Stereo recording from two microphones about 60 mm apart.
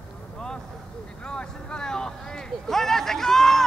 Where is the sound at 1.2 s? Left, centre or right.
Centre.